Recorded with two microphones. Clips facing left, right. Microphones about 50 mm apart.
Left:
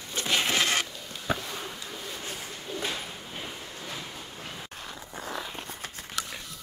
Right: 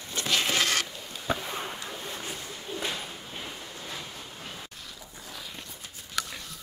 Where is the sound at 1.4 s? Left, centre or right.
Centre.